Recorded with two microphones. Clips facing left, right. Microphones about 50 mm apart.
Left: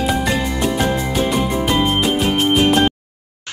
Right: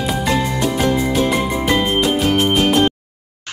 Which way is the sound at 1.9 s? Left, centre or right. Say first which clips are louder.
Right 1 dB; centre.